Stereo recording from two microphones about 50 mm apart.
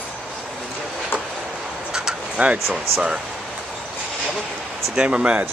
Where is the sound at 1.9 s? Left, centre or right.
Centre.